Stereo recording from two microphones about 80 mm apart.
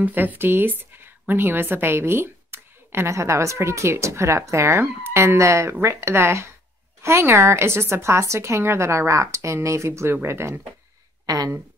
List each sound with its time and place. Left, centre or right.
0.0 s a woman's voice: right
11.2 s speech: right